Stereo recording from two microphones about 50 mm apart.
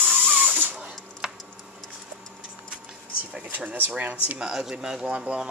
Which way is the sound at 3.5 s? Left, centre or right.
Right.